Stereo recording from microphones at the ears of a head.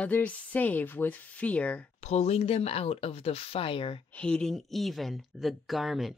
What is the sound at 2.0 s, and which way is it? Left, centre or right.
Speech, left.